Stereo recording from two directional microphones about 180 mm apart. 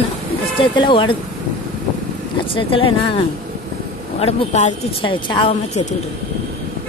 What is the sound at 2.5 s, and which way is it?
Speech, 30° left (ahead or behind).